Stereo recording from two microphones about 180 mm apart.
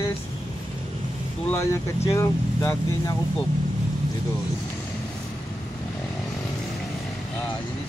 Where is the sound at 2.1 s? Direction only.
20° left (ahead or behind).